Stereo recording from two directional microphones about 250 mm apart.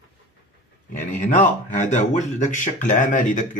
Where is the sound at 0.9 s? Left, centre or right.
Left.